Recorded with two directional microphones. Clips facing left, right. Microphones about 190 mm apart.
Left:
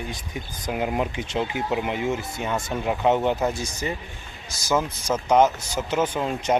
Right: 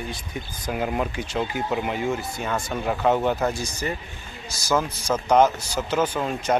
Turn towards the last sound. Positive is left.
turn(degrees=20)  # may be behind; listen again after turning